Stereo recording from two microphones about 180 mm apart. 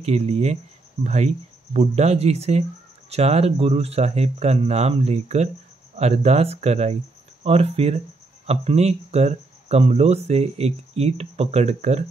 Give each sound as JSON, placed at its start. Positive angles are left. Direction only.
{"t": 0.0, "sound": "speech", "side_deg": -35}